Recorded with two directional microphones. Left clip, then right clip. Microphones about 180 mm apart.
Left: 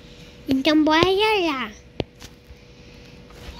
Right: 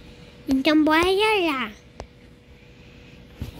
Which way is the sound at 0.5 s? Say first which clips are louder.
Left 1 dB; 5° right (ahead or behind).